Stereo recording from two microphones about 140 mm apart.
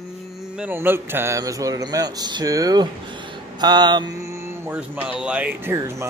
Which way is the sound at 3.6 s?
30° right (ahead or behind).